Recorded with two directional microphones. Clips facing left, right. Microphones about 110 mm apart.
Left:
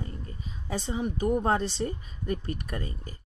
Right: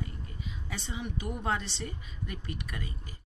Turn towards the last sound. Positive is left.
turn(degrees=40)  # may be behind; listen again after turning